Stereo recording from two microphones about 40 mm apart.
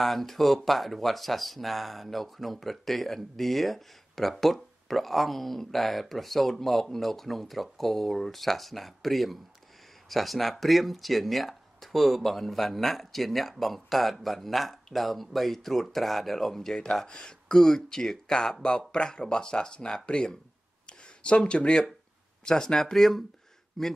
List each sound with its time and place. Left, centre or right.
0.0 s speech: centre
21.5 s speech: left; by 23.9 s centre